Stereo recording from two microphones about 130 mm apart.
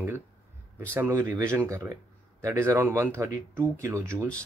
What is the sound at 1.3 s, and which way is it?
Speech, 20° right (ahead or behind).